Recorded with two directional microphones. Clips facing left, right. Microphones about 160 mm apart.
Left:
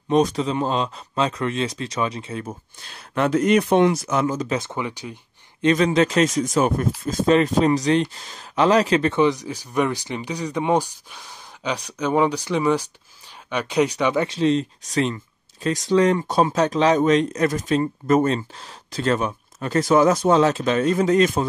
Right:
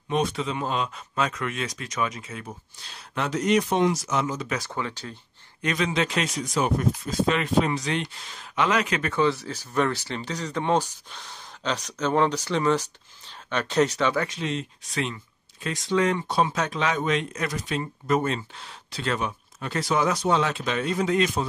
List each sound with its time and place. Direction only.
0.1 s speech: 40° left (ahead or behind)
3.2 s speech: 55° left (ahead or behind)
4.5 s speech: 20° left (ahead or behind)
5.8 s speech: 45° left (ahead or behind)
9.2 s speech: 15° left (ahead or behind)
14.2 s speech: 35° left (ahead or behind)